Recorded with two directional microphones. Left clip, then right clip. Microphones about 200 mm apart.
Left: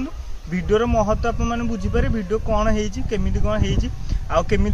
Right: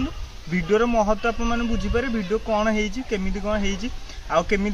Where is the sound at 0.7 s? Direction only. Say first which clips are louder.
Left 1 dB; 15° left (ahead or behind).